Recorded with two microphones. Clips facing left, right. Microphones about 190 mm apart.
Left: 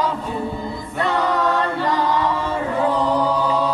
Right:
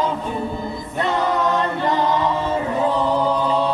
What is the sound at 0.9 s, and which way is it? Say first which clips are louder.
Chant: even; 20° right (ahead or behind).